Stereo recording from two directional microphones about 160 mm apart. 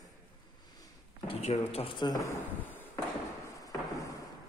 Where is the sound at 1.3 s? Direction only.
40° left (ahead or behind).